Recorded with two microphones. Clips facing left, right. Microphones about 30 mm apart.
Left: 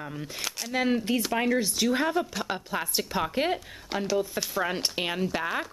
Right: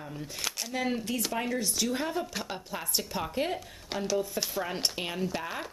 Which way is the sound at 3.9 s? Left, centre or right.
Centre.